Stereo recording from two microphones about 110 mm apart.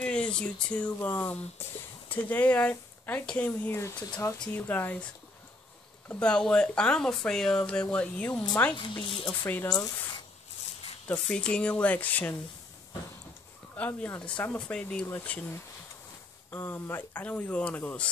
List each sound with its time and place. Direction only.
0.0 s speech: 10° left (ahead or behind)
6.0 s speech: 10° left (ahead or behind)
8.7 s speech: 50° left (ahead or behind)
9.4 s speech: 20° left (ahead or behind)
11.1 s speech: 10° left (ahead or behind)
13.7 s speech: 15° left (ahead or behind)